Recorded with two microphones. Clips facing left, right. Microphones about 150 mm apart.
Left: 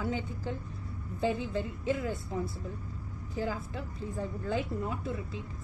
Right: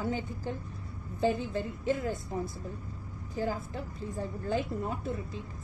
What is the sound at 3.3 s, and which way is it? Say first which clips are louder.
A woman's voice: right 1 dB; 45° right (ahead or behind).